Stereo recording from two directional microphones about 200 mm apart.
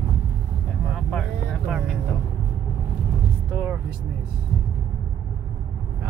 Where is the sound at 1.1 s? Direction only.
Centre (ahead or behind).